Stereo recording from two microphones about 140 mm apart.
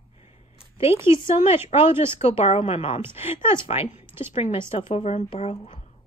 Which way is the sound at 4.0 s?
15° right (ahead or behind).